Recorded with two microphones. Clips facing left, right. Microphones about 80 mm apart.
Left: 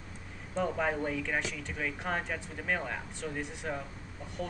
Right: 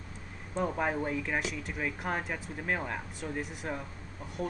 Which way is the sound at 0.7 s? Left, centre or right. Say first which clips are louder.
Right 1 dB; centre.